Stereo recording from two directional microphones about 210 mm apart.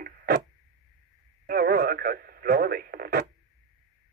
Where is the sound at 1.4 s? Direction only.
45° right (ahead or behind).